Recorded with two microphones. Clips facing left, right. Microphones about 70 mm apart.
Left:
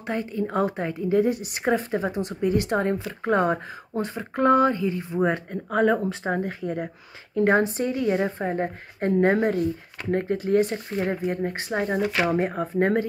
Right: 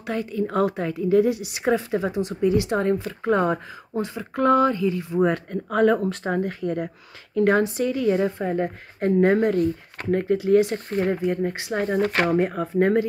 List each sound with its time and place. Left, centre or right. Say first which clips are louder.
0.0 s a woman's voice: right 1 dB; left
5.2 s a woman's voice: right 2 dB; left
12.0 s speech: right 4 dB; right
12.5 s a woman's voice: right 2 dB; left